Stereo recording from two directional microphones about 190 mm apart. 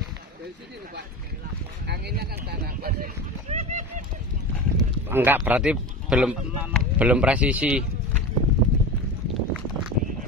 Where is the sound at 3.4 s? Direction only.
35° right (ahead or behind).